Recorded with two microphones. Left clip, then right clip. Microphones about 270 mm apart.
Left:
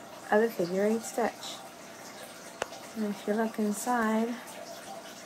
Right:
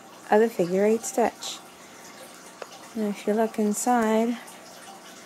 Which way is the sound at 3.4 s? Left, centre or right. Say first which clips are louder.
Right 6 dB; right.